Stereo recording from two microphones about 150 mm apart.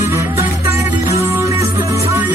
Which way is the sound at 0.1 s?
20° right (ahead or behind).